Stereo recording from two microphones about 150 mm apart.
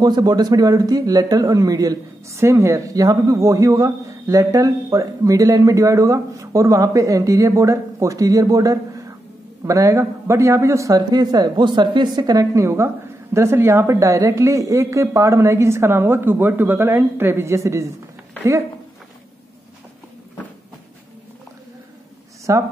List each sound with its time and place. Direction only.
0.0 s a man's voice: 25° right (ahead or behind)
22.5 s a man's voice: 20° right (ahead or behind)